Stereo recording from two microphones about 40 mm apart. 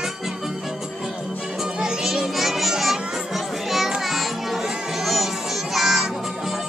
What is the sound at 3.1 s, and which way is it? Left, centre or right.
Children playing, centre.